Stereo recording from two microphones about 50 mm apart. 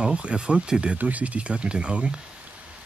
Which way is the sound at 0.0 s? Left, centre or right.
Right.